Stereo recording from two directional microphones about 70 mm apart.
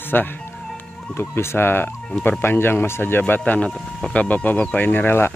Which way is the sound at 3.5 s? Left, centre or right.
Left.